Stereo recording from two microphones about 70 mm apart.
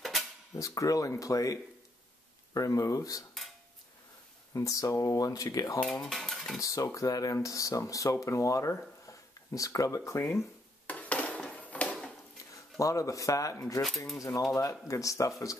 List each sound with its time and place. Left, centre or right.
0.0 s a sound: centre
0.6 s speech: left
4.6 s speech: left
5.8 s dishes: centre
6.6 s speech: left
9.0 s a sound: left
10.9 s a sound: centre
12.7 s speech: left
13.8 s speech: centre
14.5 s speech: left